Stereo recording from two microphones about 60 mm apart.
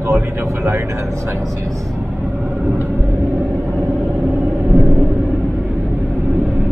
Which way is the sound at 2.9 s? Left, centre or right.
Right.